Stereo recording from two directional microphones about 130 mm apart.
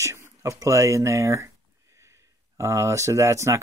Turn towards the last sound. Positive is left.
turn(degrees=-25)  # may be behind; listen again after turning